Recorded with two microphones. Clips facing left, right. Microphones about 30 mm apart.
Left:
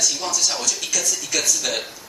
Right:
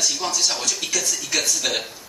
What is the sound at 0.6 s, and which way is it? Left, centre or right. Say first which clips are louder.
Speech: even; right.